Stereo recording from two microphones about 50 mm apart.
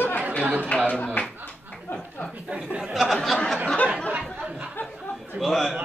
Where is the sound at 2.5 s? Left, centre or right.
Centre.